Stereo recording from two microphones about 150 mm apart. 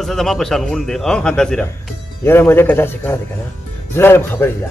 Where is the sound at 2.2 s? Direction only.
15° left (ahead or behind).